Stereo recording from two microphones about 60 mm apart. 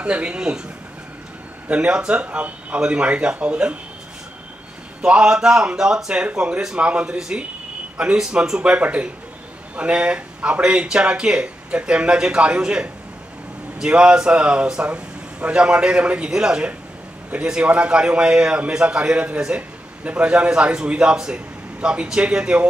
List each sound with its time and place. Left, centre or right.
0.0 s speech: right
1.7 s speech: centre
5.0 s a man's voice: centre